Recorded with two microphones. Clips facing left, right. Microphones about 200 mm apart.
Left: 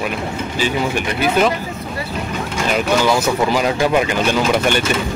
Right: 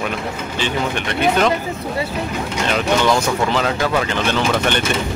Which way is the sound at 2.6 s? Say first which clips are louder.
Left 1 dB; 5° left (ahead or behind).